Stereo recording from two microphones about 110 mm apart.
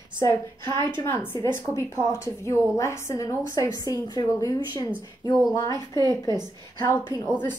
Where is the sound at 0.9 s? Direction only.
20° left (ahead or behind); by 4.5 s 35° left (ahead or behind).